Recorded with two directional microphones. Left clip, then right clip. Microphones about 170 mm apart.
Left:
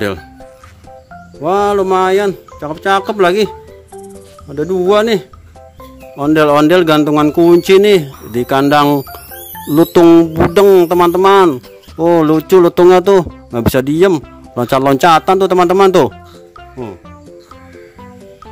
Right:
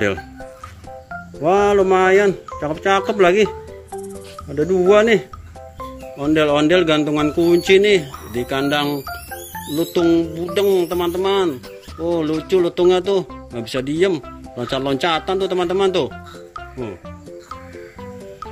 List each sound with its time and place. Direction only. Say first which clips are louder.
1.7 s a sound: left 2 dB; 15° left (ahead or behind)
2.0 s speech: left 2 dB; 15° left (ahead or behind)
4.0 s music: right 1 dB; centre (ahead or behind)
4.6 s speech: left 2 dB; 25° left (ahead or behind); by 16.1 s 45° left (ahead or behind)